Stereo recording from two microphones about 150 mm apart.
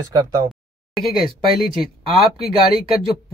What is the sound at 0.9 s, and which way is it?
Speech, centre (ahead or behind).